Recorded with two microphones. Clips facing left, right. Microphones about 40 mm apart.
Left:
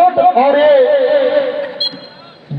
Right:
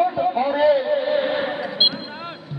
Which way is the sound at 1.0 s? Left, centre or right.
Left.